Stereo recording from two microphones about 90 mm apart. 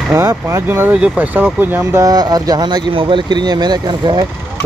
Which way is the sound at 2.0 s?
45° right (ahead or behind).